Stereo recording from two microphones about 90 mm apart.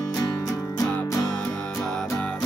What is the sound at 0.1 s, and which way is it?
Music, 45° left (ahead or behind).